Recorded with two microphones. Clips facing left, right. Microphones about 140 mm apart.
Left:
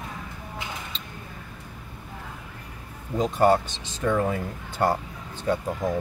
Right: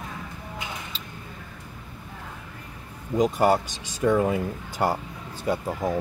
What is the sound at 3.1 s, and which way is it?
Speech, 10° right (ahead or behind).